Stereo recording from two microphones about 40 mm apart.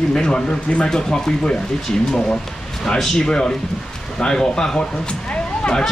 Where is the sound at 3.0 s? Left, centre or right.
Centre.